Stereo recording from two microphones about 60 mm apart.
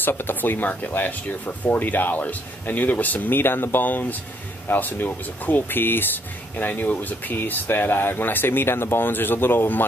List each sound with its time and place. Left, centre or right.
0.0 s speech: left